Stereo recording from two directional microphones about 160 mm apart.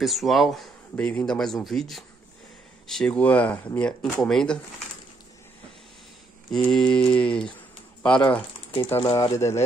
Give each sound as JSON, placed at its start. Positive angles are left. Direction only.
{"t": 0.0, "sound": "speech", "side_deg": 0}
{"t": 6.5, "sound": "speech", "side_deg": 5}
{"t": 9.0, "sound": "speech", "side_deg": 25}